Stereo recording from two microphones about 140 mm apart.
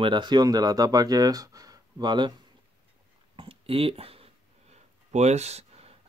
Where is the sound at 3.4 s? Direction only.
40° right (ahead or behind).